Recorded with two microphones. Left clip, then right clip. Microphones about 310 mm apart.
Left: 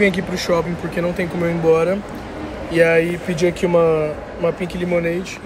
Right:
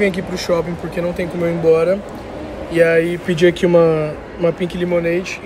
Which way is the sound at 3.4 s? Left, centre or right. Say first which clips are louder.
Right 5 dB; right.